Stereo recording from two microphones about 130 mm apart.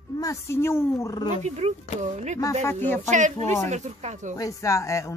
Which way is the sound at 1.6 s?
55° right (ahead or behind).